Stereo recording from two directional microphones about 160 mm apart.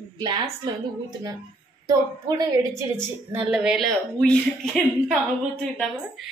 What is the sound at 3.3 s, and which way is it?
A woman's voice, 5° right (ahead or behind).